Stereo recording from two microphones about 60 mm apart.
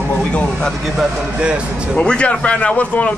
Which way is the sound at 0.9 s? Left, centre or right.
Centre.